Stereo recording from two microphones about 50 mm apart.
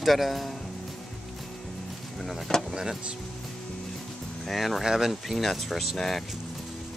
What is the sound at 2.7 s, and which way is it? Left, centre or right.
Speech, centre.